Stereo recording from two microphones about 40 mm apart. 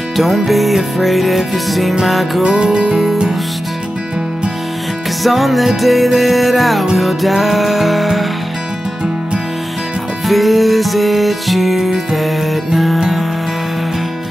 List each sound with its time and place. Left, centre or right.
0.2 s music: centre
2.4 s music: centre
2.9 s music: centre
5.2 s music: centre
10.2 s music: centre